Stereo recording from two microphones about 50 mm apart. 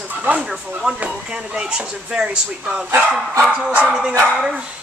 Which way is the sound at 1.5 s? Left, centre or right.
Centre.